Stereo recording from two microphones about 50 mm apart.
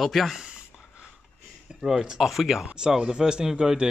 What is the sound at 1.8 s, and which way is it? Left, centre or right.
Speech, centre.